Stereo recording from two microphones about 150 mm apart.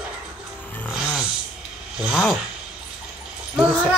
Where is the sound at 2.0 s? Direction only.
Centre (ahead or behind).